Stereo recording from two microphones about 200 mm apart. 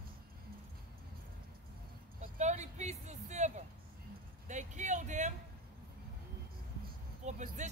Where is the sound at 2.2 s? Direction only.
35° right (ahead or behind).